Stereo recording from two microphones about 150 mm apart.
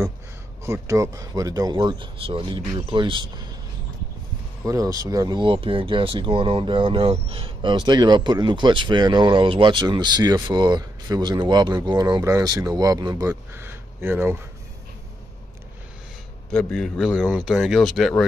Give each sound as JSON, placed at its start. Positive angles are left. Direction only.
{"t": 0.7, "sound": "speech", "side_deg": -20}
{"t": 4.6, "sound": "speech", "side_deg": -20}
{"t": 16.7, "sound": "speech", "side_deg": 5}